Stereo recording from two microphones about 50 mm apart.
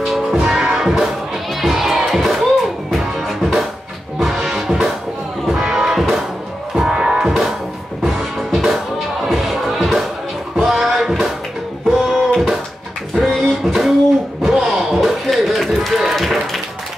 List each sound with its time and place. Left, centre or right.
0.0 s music: centre
4.2 s music: centre